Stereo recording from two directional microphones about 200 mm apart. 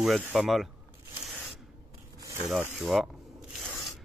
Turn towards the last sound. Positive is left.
turn(degrees=0)  # may be behind; listen again after turning